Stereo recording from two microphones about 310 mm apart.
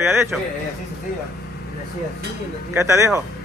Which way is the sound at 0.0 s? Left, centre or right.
Centre.